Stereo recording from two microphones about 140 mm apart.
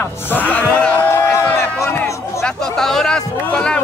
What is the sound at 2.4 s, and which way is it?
Speech, 5° left (ahead or behind).